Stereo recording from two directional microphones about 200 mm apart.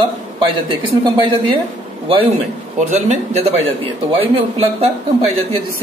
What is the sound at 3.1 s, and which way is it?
Speech, 35° right (ahead or behind).